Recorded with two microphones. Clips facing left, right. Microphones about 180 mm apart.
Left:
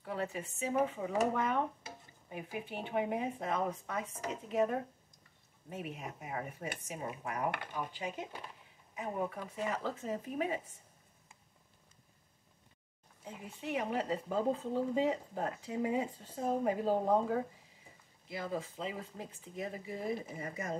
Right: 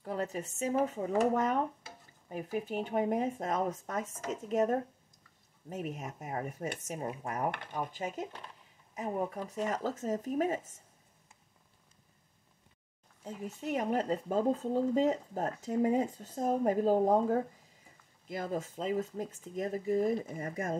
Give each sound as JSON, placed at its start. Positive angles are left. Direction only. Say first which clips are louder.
{"t": 0.0, "sound": "speech", "louder": "right 3 dB", "side_deg": -40}
{"t": 7.7, "sound": "speech", "louder": "right 3 dB", "side_deg": -45}
{"t": 9.5, "sound": "speech", "louder": "right 3 dB", "side_deg": -45}
{"t": 13.2, "sound": "speech", "louder": "right 5 dB", "side_deg": -40}